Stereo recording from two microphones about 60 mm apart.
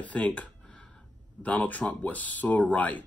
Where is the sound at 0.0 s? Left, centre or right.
Left.